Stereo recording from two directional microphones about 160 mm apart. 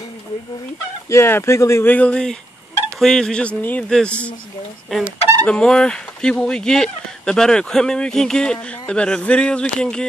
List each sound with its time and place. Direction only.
1.0 s speech: 15° left (ahead or behind)